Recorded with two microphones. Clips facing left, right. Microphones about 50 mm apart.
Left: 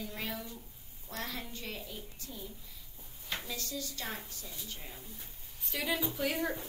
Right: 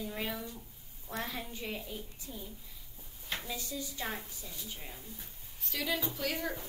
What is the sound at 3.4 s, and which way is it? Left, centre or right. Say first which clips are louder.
Speech: right 1 dB; centre.